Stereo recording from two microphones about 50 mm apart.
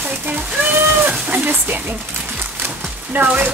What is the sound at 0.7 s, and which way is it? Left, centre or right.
Speech, right.